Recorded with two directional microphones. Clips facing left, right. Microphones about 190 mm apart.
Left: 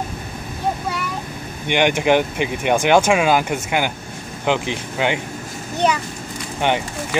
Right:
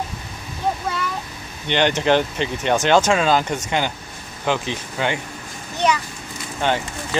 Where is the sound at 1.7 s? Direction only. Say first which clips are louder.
Left 1 dB; 10° left (ahead or behind).